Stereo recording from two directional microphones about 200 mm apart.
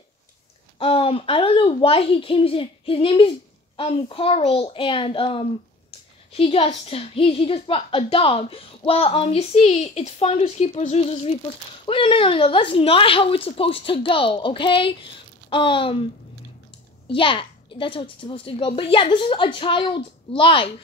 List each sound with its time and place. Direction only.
0.7 s a child's voice: 30° left (ahead or behind)
17.1 s a child's voice: 25° left (ahead or behind)